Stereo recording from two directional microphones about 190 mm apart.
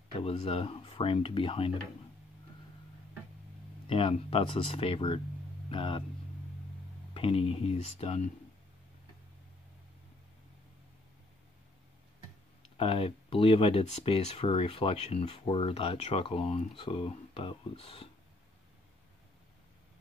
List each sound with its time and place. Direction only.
0.2 s speech: 35° left (ahead or behind)
3.8 s speech: 30° left (ahead or behind)
7.2 s speech: 30° left (ahead or behind)
12.7 s speech: 30° left (ahead or behind)